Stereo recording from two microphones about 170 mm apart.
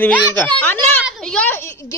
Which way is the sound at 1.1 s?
5° left (ahead or behind).